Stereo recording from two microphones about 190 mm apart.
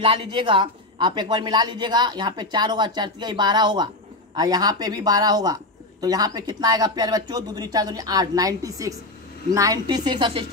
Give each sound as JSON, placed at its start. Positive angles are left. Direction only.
{"t": 0.0, "sound": "speech", "side_deg": -30}